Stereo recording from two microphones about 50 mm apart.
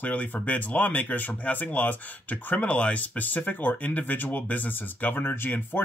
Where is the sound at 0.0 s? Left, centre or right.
Left.